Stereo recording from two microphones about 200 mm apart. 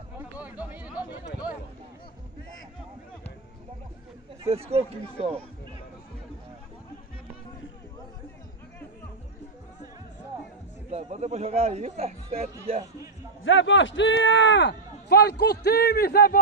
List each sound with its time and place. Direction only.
0.2 s a sound: 10° right (ahead or behind)
4.5 s speech: 30° right (ahead or behind)
10.9 s a man's voice: 35° right (ahead or behind)
13.4 s speech: 70° left (ahead or behind); by 16.3 s 50° left (ahead or behind)